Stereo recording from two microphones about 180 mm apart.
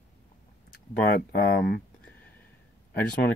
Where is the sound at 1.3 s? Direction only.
55° left (ahead or behind).